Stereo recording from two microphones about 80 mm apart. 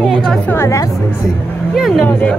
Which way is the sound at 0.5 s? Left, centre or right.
Left.